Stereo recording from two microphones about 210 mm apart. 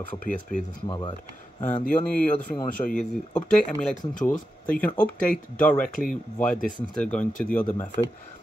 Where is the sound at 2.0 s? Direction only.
5° left (ahead or behind).